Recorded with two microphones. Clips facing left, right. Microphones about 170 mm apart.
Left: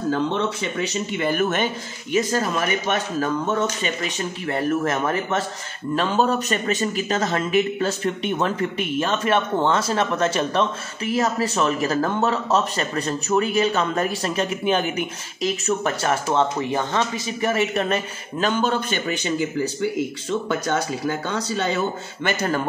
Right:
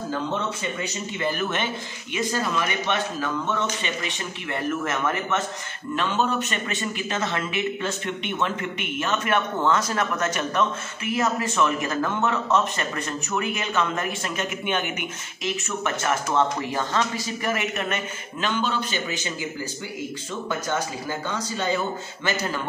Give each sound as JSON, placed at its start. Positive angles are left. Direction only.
{"t": 0.8, "sound": "a man's voice", "side_deg": 55}
{"t": 16.7, "sound": "a man's voice", "side_deg": 20}